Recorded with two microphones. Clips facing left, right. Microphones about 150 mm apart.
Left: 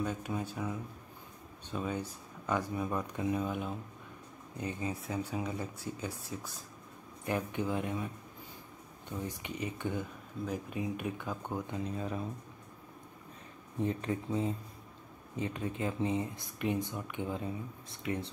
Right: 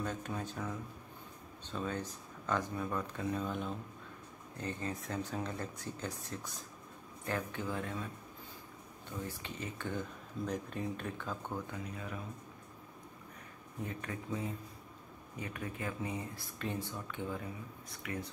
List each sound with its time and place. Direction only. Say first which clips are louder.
0.0 s speech: left 3 dB; 10° left (ahead or behind)
9.2 s speech: left 4 dB; 15° left (ahead or behind)
11.9 s speech: left 6 dB; 30° left (ahead or behind)
13.7 s speech: left 8 dB; 25° left (ahead or behind)